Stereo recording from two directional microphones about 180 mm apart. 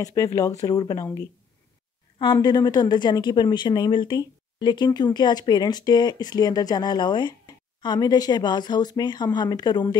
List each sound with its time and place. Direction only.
0.0 s a woman's voice: 20° left (ahead or behind)
2.3 s a woman's voice: 25° left (ahead or behind)